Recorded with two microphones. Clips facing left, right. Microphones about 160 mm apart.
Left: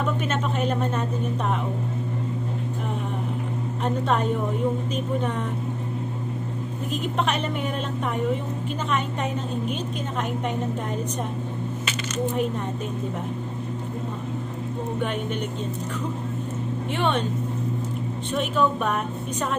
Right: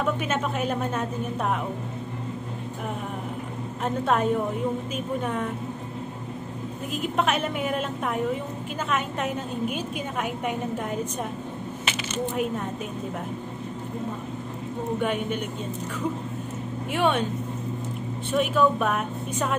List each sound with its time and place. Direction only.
0.3 s a woman's voice: 5° right (ahead or behind)
3.8 s a woman's voice: 5° right (ahead or behind)
7.2 s a woman's voice: 5° right (ahead or behind)
8.9 s a woman's voice: 5° right (ahead or behind)
16.9 s speech: 5° right (ahead or behind)
18.3 s a woman's voice: 5° right (ahead or behind)